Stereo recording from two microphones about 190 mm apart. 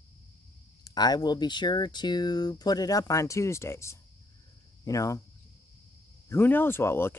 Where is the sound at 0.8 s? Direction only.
20° left (ahead or behind).